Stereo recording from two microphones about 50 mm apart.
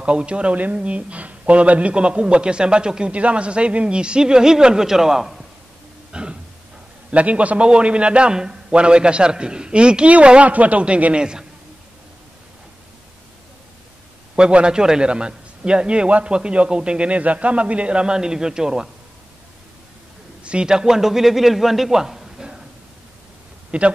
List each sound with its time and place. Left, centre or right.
0.0 s speech: right; by 5.4 s centre
6.1 s a sound: centre
7.1 s speech: right
14.3 s speech: centre
20.4 s a man's voice: centre
23.7 s speech: right